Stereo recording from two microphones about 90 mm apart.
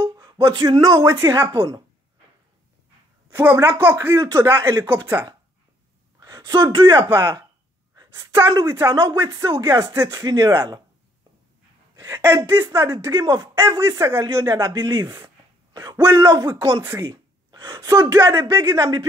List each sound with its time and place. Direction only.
0.0 s a sound: 35° right (ahead or behind)
0.7 s speech: 50° right (ahead or behind)
3.3 s a sound: 25° right (ahead or behind)
3.6 s speech: 20° right (ahead or behind)
4.0 s speech: 30° right (ahead or behind)
4.8 s speech: 20° right (ahead or behind)
6.2 s a sound: 45° right (ahead or behind)
6.9 s a woman's voice: 40° right (ahead or behind)
8.6 s speech: 30° right (ahead or behind)
11.9 s a sound: 35° right (ahead or behind)
12.4 s speech: 30° right (ahead or behind)
17.0 s gasp: 55° right (ahead or behind)
17.9 s speech: 30° right (ahead or behind)